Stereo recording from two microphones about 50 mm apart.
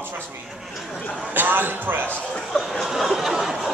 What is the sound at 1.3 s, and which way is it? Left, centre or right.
Speech, right.